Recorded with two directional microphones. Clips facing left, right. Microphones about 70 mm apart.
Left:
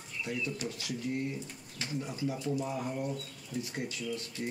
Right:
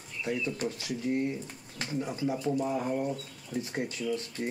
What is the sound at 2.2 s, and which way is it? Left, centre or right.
Speech, right.